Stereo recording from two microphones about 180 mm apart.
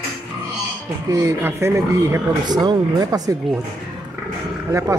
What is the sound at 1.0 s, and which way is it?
Speech, 20° right (ahead or behind).